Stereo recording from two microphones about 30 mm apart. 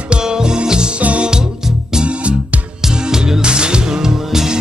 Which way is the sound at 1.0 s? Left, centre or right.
Right.